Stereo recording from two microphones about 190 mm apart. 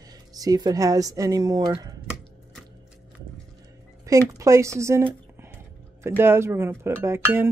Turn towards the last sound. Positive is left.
turn(degrees=-10)  # may be behind; listen again after turning